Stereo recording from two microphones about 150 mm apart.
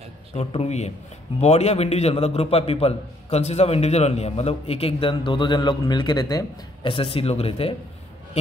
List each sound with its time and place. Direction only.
0.4 s a man's voice: 45° left (ahead or behind)